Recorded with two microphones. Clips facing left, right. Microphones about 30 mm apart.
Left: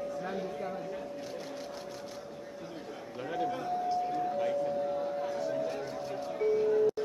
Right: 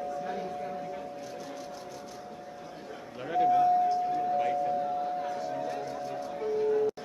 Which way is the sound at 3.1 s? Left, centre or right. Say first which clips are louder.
Right 9 dB; centre.